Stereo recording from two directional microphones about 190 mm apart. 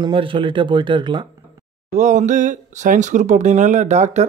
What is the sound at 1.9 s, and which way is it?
Speech, 40° right (ahead or behind).